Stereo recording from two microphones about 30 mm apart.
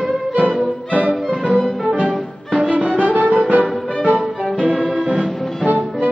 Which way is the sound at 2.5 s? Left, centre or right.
Right.